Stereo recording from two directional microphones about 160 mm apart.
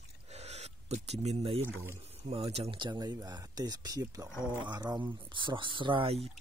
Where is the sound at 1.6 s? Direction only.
15° right (ahead or behind).